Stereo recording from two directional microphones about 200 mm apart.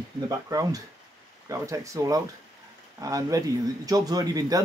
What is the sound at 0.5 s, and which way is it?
Speech, 15° right (ahead or behind).